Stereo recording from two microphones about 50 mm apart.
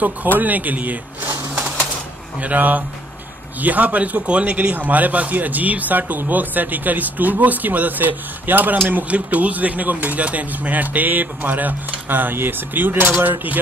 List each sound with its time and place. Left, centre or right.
0.0 s speech: right
2.3 s a man's voice: right